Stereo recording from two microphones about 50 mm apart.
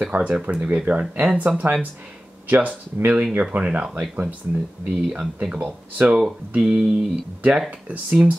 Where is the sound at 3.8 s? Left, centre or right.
Centre.